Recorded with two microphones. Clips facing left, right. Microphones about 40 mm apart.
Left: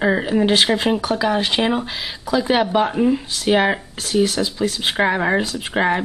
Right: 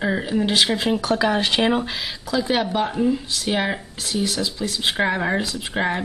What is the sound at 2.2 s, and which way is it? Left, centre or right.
Speech, left.